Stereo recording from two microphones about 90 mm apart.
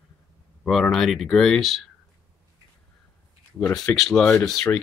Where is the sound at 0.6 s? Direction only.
5° left (ahead or behind).